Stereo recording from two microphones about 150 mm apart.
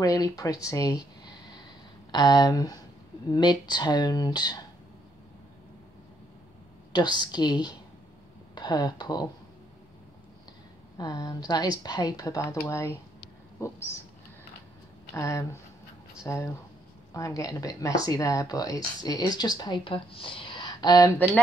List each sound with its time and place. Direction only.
0.0 s speech: 25° left (ahead or behind)
2.0 s speech: 30° left (ahead or behind)
6.9 s speech: 30° left (ahead or behind)
11.0 s speech: 25° left (ahead or behind)
15.1 s speech: 20° left (ahead or behind)